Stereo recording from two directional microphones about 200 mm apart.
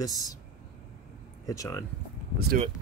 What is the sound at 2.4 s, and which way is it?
Speech, 50° right (ahead or behind).